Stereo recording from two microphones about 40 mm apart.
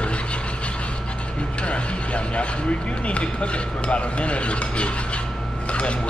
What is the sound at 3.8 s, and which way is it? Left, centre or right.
Filing, left.